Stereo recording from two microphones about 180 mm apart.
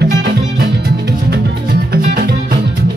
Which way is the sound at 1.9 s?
55° right (ahead or behind).